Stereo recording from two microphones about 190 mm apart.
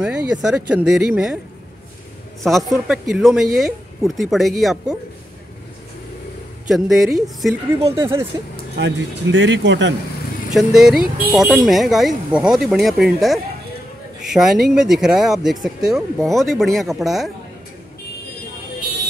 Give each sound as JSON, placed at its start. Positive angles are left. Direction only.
{"t": 0.0, "sound": "speech", "side_deg": -5}
{"t": 2.4, "sound": "speech", "side_deg": 0}
{"t": 6.7, "sound": "speech", "side_deg": 0}
{"t": 7.9, "sound": "speech", "side_deg": -15}
{"t": 8.7, "sound": "speech", "side_deg": -70}
{"t": 10.5, "sound": "speech", "side_deg": 0}